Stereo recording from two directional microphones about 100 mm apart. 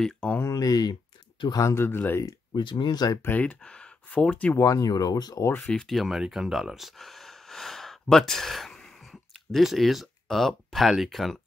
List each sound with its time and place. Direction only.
0.0 s speech: 10° left (ahead or behind)
0.4 s speech: 35° left (ahead or behind)
1.6 s speech: 30° left (ahead or behind)
2.2 s speech: 50° left (ahead or behind)
3.3 s speech: 15° left (ahead or behind)
4.6 s speech: 35° left (ahead or behind)
5.6 s speech: 5° left (ahead or behind)